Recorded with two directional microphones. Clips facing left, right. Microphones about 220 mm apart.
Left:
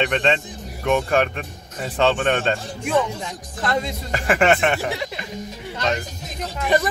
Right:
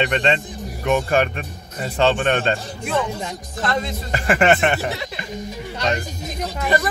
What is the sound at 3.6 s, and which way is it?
Speech, 10° left (ahead or behind).